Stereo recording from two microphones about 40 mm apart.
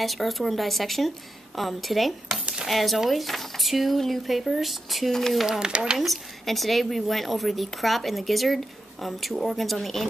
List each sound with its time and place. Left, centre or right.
0.0 s a woman's voice: centre
5.5 s speech: centre
5.9 s a woman's voice: centre